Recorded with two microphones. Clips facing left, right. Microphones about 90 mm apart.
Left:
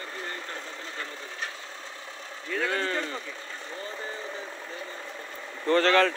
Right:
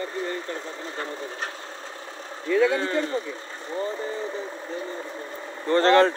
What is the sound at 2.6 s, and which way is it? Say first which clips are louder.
Speech: right 6 dB; 10° right (ahead or behind).